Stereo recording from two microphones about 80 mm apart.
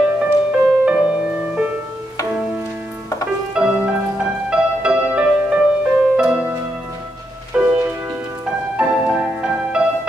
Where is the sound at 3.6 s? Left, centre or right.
Centre.